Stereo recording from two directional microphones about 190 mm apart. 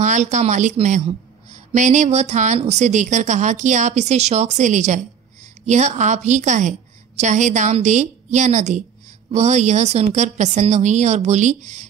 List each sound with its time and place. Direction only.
0.0 s a woman's voice: 40° right (ahead or behind)